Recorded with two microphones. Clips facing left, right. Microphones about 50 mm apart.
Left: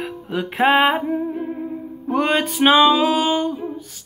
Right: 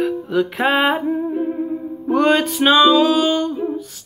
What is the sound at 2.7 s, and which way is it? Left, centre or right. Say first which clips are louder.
Music: right 2 dB; centre.